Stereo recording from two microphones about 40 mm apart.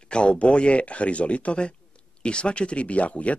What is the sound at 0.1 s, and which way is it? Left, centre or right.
Speech, left.